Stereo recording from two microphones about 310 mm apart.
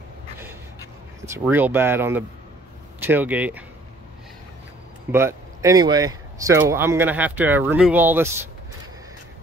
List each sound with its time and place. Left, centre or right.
1.2 s speech: centre
5.1 s speech: centre